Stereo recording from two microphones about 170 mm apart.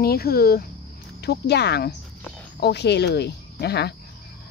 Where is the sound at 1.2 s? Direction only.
75° left (ahead or behind).